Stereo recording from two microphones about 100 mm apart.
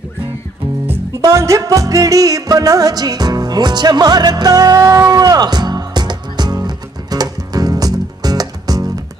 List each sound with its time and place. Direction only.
0.8 s music: 30° right (ahead or behind)